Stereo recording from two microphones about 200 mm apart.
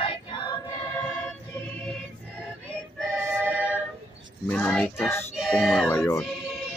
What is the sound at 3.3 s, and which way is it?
Music, 10° right (ahead or behind).